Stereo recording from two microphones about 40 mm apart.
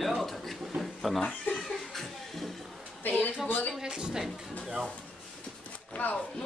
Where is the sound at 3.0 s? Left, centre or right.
Left.